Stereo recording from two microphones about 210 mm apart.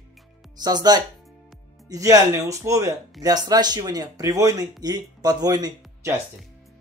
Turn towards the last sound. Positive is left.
turn(degrees=-20)  # may be behind; listen again after turning